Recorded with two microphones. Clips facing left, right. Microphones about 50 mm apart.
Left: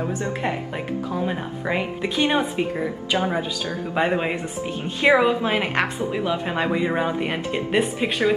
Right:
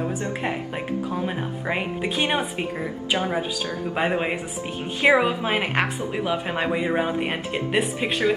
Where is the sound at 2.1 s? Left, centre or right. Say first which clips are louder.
Left 4 dB; right.